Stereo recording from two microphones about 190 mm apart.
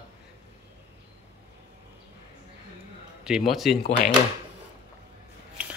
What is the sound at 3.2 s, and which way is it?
Speech, centre (ahead or behind).